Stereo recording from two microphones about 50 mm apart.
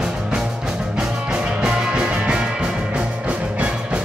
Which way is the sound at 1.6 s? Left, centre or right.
Centre.